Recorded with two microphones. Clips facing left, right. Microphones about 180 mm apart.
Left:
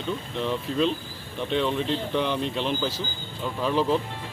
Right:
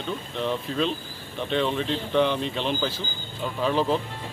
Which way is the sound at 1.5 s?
5° left (ahead or behind).